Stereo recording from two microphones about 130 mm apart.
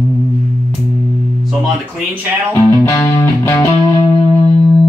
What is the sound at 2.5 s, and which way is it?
Music, 25° left (ahead or behind).